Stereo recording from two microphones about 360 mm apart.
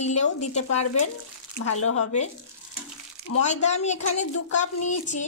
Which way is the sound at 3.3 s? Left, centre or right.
Left.